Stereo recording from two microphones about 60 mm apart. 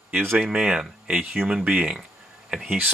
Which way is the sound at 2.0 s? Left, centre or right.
Centre.